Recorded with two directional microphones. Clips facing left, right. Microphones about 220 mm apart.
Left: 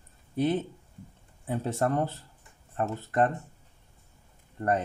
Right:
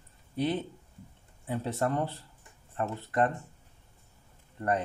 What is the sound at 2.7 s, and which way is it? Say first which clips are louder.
Speech: left 2 dB; 30° left (ahead or behind).